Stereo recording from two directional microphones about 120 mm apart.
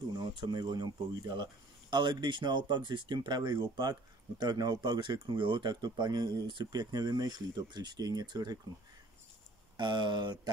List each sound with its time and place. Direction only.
0.2 s speech: 40° right (ahead or behind)
9.8 s speech: 40° right (ahead or behind)